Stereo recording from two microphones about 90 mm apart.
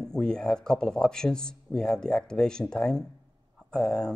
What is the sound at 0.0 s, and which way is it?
Speech, 10° left (ahead or behind).